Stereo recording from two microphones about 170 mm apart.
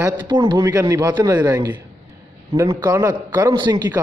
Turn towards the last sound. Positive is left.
turn(degrees=-25)  # may be behind; listen again after turning